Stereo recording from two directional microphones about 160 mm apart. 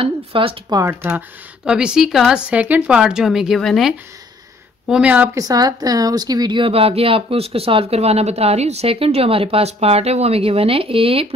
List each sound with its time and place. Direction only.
0.0 s a woman's voice: 35° right (ahead or behind)
0.7 s a woman's voice: 15° right (ahead or behind)
5.4 s a woman's voice: 25° right (ahead or behind)